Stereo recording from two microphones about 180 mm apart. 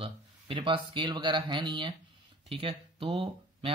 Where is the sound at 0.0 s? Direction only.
30° right (ahead or behind).